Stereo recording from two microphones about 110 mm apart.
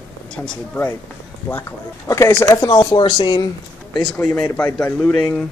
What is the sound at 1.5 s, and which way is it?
Speech, 20° left (ahead or behind).